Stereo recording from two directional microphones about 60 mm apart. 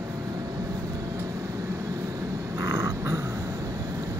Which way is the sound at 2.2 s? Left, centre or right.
Right.